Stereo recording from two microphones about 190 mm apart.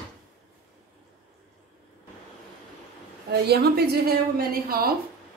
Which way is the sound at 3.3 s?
60° right (ahead or behind).